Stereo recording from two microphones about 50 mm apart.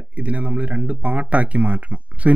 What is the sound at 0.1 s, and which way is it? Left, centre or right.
Speech, right.